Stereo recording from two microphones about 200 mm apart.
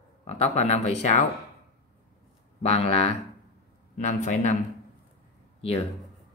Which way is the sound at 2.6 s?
30° left (ahead or behind).